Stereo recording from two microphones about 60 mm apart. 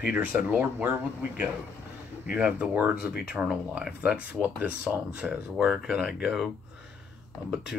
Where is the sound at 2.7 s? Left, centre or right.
Right.